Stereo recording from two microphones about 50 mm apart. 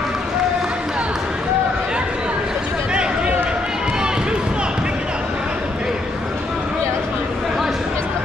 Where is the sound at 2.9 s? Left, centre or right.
Centre.